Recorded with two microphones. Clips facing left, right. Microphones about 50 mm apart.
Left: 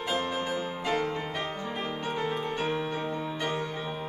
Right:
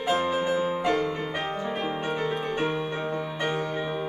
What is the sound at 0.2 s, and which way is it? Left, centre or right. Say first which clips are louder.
Music: right 6 dB; right.